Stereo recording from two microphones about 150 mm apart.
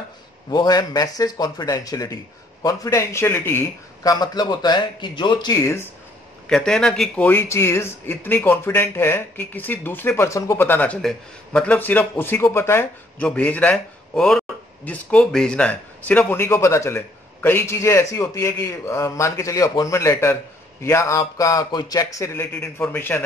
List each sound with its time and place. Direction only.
0.5 s a man's voice: 25° left (ahead or behind)
6.5 s a man's voice: 5° left (ahead or behind)